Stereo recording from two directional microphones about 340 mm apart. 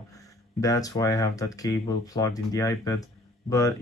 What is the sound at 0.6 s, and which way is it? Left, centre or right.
Speech, centre.